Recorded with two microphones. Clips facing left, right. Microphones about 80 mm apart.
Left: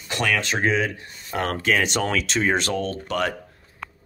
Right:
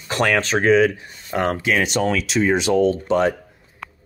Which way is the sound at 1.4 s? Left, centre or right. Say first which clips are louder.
Right 4 dB; centre.